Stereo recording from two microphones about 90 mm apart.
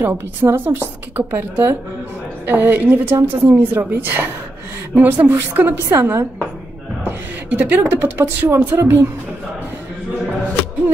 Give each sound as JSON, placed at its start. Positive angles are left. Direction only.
{"t": 0.0, "sound": "a woman's voice", "side_deg": -25}